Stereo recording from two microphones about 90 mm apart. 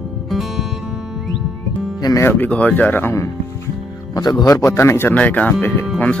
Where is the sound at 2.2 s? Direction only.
25° left (ahead or behind).